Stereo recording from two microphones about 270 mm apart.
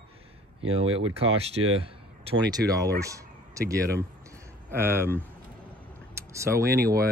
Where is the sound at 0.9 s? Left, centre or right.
Right.